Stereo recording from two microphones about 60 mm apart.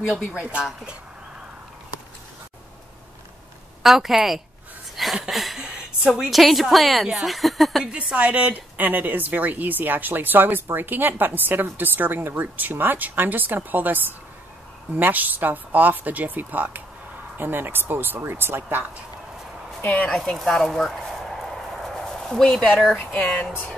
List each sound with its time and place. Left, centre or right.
0.4 s speech: centre
3.8 s a woman's voice: centre
4.9 s a sound: centre
5.3 s a woman's voice: centre
6.4 s a woman's voice: centre
7.8 s a woman's voice: centre; by 18.9 s right
19.8 s speech: left
20.2 s a woman's voice: centre
20.6 s a sound: centre
22.4 s speech: centre